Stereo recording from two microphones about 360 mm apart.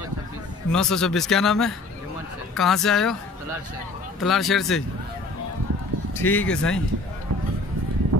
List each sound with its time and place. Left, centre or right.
0.7 s speech: centre
4.2 s speech: centre
6.1 s speech: centre
8.1 s run: right